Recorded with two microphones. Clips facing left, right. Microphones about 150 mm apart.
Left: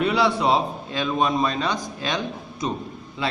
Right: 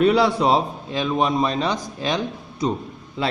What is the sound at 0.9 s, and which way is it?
A woman's voice, 20° right (ahead or behind).